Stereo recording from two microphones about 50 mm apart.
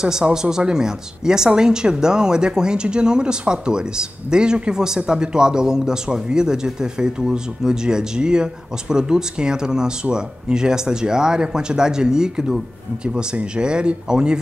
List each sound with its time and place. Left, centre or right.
0.0 s speech: centre